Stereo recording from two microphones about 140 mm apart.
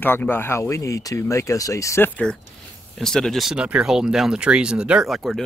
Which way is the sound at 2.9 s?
5° left (ahead or behind).